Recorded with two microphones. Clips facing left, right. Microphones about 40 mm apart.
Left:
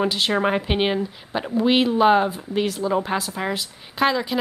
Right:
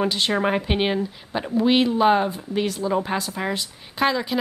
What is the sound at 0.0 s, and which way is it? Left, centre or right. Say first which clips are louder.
Speech: left 1 dB; centre.